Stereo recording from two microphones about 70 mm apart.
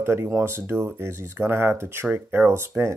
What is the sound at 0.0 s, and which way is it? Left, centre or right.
Speech, right.